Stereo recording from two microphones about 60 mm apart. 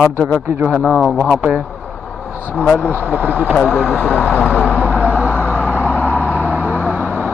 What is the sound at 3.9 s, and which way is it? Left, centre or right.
Speech, left.